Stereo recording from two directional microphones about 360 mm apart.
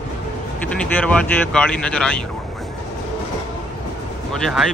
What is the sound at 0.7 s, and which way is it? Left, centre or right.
A man's voice, centre.